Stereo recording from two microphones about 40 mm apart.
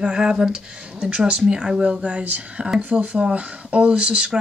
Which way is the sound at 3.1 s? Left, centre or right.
Right.